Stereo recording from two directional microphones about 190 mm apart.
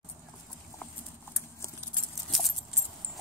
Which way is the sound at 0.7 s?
15° left (ahead or behind).